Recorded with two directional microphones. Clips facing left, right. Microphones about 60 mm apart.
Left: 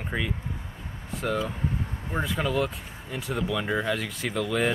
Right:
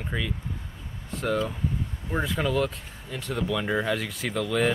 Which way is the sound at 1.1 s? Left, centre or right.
Centre.